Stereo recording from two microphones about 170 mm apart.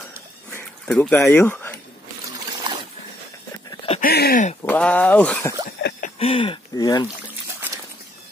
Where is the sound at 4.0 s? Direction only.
65° left (ahead or behind).